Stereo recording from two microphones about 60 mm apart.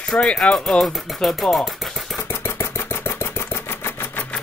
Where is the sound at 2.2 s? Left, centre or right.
Left.